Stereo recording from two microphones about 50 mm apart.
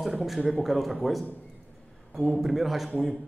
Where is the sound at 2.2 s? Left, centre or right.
Centre.